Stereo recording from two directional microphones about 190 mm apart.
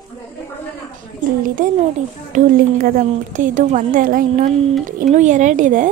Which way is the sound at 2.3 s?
45° right (ahead or behind).